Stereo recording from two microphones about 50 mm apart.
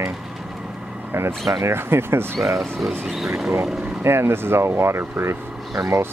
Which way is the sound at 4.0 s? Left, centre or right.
Right.